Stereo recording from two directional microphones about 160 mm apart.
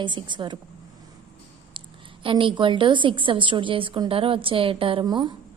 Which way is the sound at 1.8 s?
30° right (ahead or behind).